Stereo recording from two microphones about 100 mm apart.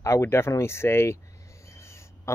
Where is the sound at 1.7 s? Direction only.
30° left (ahead or behind).